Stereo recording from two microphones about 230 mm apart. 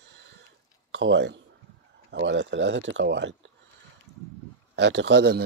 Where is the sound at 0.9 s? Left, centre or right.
Right.